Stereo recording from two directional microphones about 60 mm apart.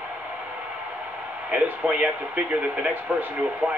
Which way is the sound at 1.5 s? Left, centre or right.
Right.